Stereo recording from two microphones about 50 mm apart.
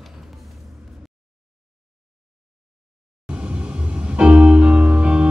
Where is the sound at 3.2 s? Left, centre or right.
Right.